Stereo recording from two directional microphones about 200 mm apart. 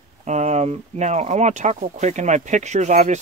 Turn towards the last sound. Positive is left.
turn(degrees=-35)  # may be behind; listen again after turning